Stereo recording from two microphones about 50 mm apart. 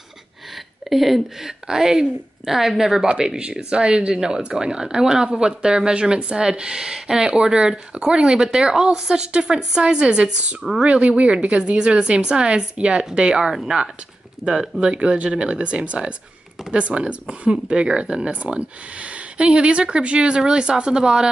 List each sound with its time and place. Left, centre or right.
0.8 s a woman's voice: centre